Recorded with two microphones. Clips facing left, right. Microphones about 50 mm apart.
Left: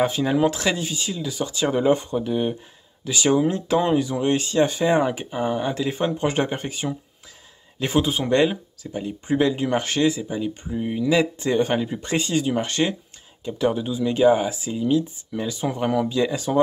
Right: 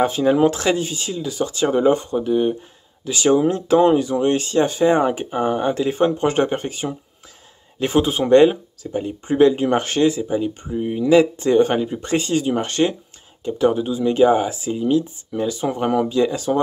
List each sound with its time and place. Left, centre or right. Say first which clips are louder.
0.0 s speech: right 4 dB; centre
5.3 s speech: right 4 dB; centre
5.9 s speech: right 5 dB; centre
10.7 s speech: right 3 dB; centre
11.0 s speech: right 6 dB; centre
11.3 s speech: right 5 dB; centre
15.3 s speech: right 4 dB; centre
15.7 s speech: right 1 dB; centre
16.5 s speech: left 3 dB; centre